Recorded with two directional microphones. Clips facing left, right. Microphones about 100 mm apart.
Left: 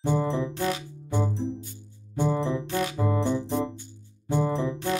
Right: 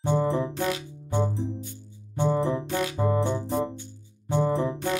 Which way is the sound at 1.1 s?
Centre (ahead or behind).